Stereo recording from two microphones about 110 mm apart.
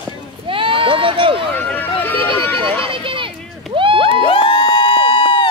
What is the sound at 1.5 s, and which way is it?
Run, 15° left (ahead or behind).